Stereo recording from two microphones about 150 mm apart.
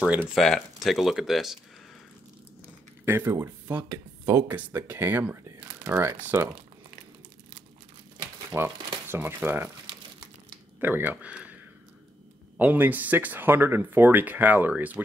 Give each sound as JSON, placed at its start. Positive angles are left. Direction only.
{"t": 0.0, "sound": "speech", "side_deg": -10}
{"t": 3.1, "sound": "speech", "side_deg": -15}
{"t": 8.2, "sound": "speech", "side_deg": -15}
{"t": 10.8, "sound": "speech", "side_deg": -15}